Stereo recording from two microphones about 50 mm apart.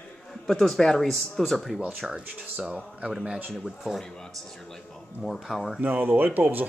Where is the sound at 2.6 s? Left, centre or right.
Right.